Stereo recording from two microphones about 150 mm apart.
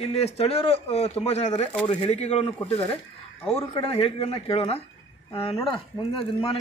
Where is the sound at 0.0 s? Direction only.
45° left (ahead or behind).